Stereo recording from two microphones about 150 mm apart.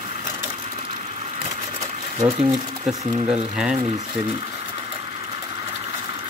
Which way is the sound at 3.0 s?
40° right (ahead or behind).